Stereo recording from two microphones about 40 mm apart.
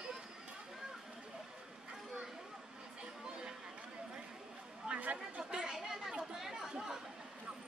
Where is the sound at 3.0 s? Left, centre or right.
Right.